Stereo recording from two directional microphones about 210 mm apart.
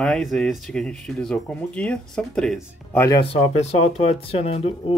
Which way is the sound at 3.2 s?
30° left (ahead or behind).